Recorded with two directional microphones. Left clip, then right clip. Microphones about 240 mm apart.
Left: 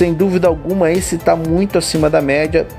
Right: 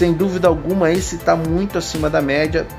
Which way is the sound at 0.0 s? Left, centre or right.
Left.